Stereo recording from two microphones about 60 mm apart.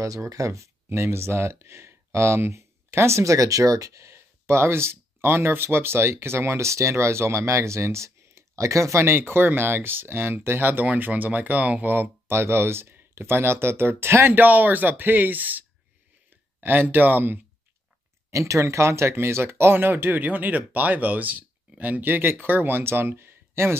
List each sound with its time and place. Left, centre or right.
0.0 s speech: right
0.8 s speech: right
11.9 s speech: right
18.3 s speech: right